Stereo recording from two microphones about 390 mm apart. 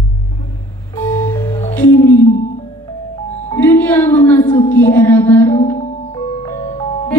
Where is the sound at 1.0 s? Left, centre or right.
Centre.